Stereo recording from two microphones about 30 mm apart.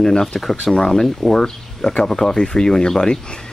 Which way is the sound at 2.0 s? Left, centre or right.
Centre.